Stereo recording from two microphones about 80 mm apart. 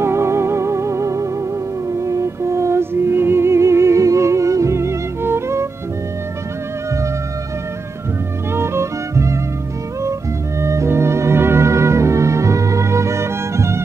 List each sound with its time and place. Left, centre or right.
0.0 s music: right
8.5 s music: right
10.6 s music: right